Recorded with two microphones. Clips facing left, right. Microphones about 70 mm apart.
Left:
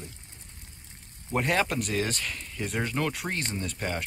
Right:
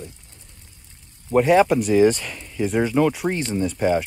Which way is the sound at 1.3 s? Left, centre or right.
Centre.